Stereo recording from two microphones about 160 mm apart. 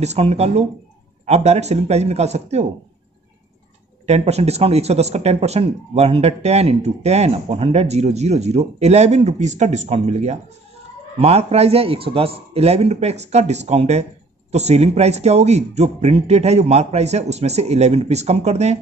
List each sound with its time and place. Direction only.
0.0 s a man's voice: 40° right (ahead or behind)
4.0 s a man's voice: 40° right (ahead or behind)